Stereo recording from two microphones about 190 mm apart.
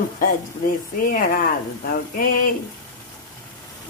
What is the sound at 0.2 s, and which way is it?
Speech, 45° left (ahead or behind).